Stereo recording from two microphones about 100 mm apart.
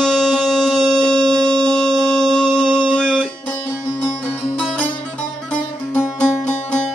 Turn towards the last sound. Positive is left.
turn(degrees=10)  # may be behind; listen again after turning